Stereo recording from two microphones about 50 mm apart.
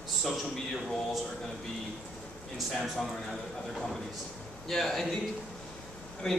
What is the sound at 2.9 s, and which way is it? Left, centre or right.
Speech, centre.